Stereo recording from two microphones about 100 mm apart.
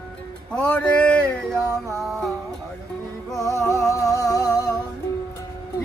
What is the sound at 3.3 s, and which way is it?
Music, 35° left (ahead or behind).